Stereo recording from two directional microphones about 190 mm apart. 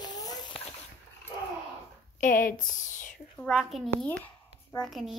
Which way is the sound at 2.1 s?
45° left (ahead or behind).